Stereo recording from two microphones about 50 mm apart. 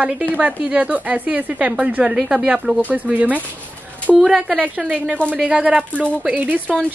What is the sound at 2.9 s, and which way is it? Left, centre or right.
Speech, right.